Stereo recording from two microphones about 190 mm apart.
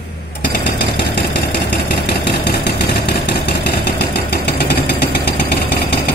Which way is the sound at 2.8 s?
60° left (ahead or behind).